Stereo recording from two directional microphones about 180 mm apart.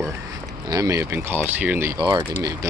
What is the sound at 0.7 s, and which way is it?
Speech, 20° right (ahead or behind).